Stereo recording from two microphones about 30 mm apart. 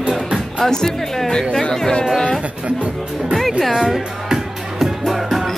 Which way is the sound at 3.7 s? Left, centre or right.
Centre.